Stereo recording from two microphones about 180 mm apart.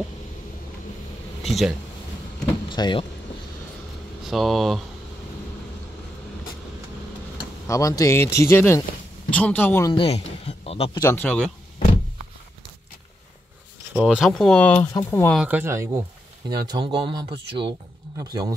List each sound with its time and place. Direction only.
1.4 s speech: centre (ahead or behind)
2.7 s speech: 25° left (ahead or behind)
4.3 s speech: centre (ahead or behind)
7.6 s speech: 15° left (ahead or behind)
9.8 s speech: 30° left (ahead or behind)
11.0 s speech: 10° left (ahead or behind)
13.9 s speech: centre (ahead or behind); by 15.3 s 15° left (ahead or behind)
15.3 s speech: 10° right (ahead or behind)